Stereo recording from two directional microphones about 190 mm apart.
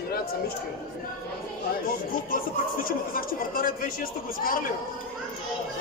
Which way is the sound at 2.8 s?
50° left (ahead or behind).